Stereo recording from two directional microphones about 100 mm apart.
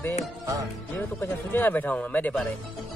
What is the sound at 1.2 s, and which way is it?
Speech, 20° left (ahead or behind).